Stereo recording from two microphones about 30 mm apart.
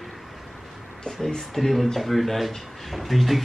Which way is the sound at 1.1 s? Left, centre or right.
Centre.